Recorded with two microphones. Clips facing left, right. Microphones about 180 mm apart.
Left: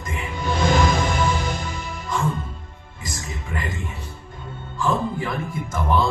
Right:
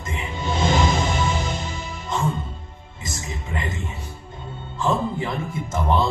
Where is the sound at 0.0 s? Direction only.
25° right (ahead or behind).